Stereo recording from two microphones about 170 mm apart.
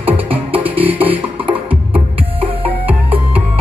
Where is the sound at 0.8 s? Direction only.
10° right (ahead or behind).